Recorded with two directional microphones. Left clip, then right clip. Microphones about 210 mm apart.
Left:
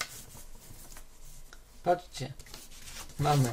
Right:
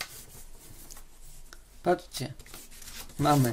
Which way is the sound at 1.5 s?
45° right (ahead or behind).